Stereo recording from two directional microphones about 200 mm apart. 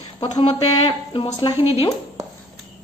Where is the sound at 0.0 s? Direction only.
25° left (ahead or behind).